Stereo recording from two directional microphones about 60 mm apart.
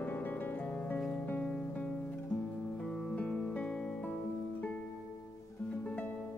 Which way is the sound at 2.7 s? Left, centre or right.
Centre.